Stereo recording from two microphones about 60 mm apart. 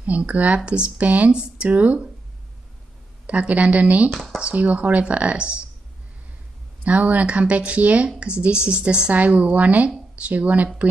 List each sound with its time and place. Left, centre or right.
0.0 s a woman's voice: right
3.3 s a woman's voice: right
4.1 s speech: centre
4.4 s a woman's voice: right
6.8 s a woman's voice: right